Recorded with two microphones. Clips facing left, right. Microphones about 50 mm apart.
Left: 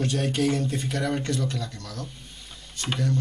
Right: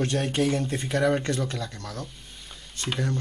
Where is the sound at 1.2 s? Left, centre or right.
Right.